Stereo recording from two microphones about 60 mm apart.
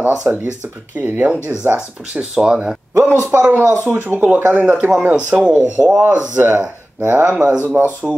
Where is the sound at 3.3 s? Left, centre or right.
Right.